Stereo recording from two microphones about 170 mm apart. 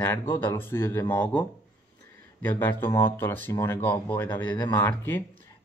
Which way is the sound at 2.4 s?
10° left (ahead or behind).